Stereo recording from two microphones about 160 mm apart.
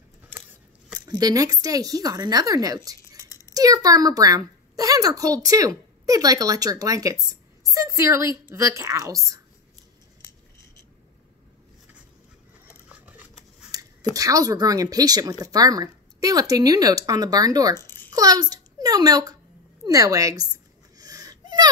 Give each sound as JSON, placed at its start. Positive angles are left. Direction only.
{"t": 0.9, "sound": "speech", "side_deg": -25}
{"t": 12.8, "sound": "scissors", "side_deg": -10}
{"t": 14.1, "sound": "speech", "side_deg": -20}
{"t": 17.7, "sound": "babbling", "side_deg": 15}
{"t": 18.1, "sound": "a child's voice", "side_deg": -25}
{"t": 21.0, "sound": "a sound", "side_deg": -25}